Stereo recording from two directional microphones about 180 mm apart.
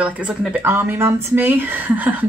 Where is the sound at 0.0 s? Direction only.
5° right (ahead or behind).